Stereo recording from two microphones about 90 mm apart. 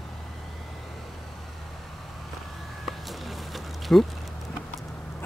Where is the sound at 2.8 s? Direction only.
Centre (ahead or behind).